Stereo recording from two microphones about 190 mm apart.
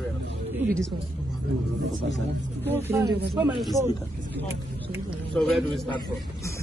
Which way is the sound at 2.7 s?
15° right (ahead or behind).